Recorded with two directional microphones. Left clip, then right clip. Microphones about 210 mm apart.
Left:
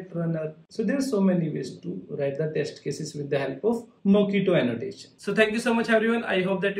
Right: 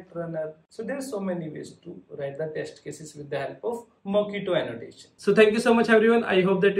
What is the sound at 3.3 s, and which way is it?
Speech, centre (ahead or behind).